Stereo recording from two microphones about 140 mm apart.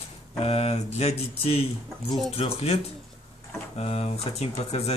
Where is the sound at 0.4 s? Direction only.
45° left (ahead or behind).